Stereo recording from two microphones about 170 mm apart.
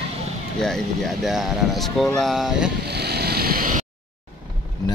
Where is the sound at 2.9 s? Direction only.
70° right (ahead or behind).